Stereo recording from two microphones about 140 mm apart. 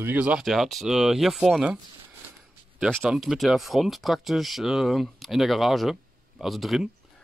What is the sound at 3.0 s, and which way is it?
Speech, 5° right (ahead or behind).